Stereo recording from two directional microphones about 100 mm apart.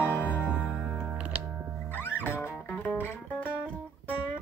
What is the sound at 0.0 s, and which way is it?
Music, 15° left (ahead or behind).